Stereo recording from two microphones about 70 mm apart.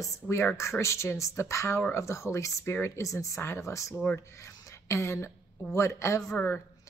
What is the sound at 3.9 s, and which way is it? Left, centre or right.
Speech, left.